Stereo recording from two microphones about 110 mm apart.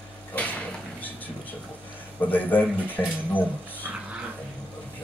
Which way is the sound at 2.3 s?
15° left (ahead or behind).